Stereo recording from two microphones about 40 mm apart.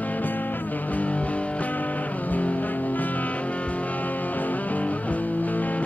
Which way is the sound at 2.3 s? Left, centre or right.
Left.